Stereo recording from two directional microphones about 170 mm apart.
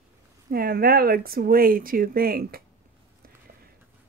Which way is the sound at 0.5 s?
60° right (ahead or behind).